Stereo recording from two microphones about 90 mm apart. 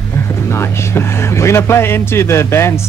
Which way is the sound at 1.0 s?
30° left (ahead or behind).